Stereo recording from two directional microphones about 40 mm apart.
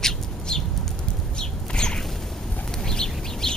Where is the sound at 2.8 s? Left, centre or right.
Centre.